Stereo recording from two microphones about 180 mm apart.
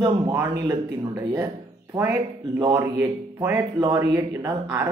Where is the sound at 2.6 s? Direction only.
25° right (ahead or behind).